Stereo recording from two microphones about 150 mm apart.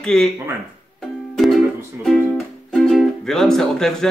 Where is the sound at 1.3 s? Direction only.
Centre (ahead or behind).